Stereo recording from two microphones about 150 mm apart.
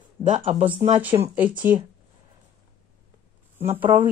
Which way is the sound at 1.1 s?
25° right (ahead or behind).